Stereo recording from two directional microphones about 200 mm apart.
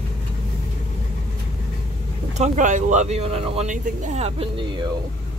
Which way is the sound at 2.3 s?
35° right (ahead or behind).